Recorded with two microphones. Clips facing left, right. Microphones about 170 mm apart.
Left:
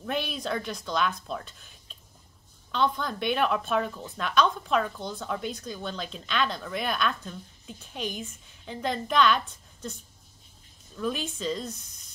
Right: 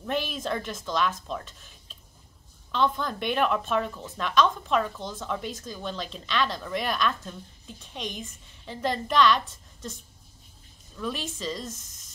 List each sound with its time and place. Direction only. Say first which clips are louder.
0.0 s speech: right 1 dB; centre (ahead or behind)
2.7 s speech: right 1 dB; centre (ahead or behind)
9.5 s a sound: left 1 dB; centre (ahead or behind)
11.3 s speech: left 2 dB; centre (ahead or behind)
11.7 s speech: even; 40° right (ahead or behind)